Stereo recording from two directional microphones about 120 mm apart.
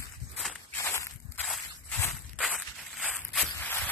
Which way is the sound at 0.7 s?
20° left (ahead or behind).